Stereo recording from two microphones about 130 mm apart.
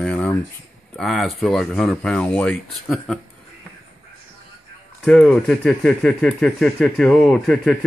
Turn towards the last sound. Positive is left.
turn(degrees=5)  # may be behind; listen again after turning